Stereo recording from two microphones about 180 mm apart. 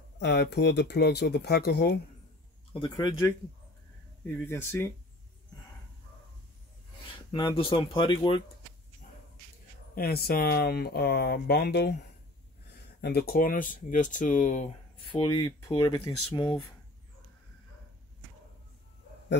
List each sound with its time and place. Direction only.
0.2 s speech: 70° left (ahead or behind)
2.7 s speech: 25° left (ahead or behind)
7.2 s speech: 25° left (ahead or behind)
9.9 s speech: 60° left (ahead or behind)
13.0 s speech: 60° left (ahead or behind); by 16.7 s 25° left (ahead or behind)